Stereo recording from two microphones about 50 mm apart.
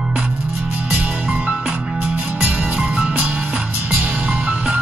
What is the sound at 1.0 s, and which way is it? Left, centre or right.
Music, right.